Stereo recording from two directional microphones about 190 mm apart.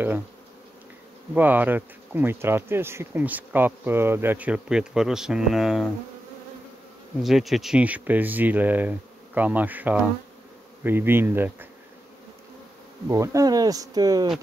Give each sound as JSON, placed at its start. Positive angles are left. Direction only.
{"t": 1.3, "sound": "bee", "side_deg": -10}
{"t": 7.2, "sound": "bee", "side_deg": 0}
{"t": 13.1, "sound": "speech", "side_deg": -15}